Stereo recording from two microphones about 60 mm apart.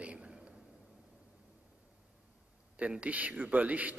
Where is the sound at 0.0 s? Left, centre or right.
Centre.